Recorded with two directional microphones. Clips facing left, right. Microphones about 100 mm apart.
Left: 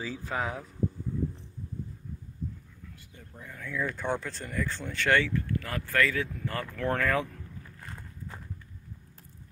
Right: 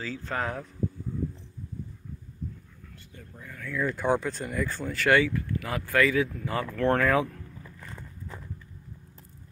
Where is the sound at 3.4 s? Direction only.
20° left (ahead or behind).